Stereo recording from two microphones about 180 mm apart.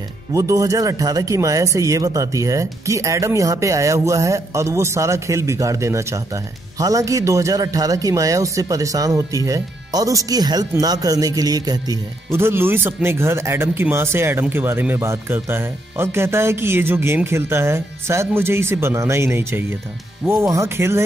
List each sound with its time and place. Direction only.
0.3 s speech: 20° right (ahead or behind)